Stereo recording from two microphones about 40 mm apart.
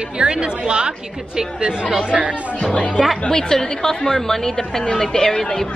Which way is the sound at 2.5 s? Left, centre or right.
Left.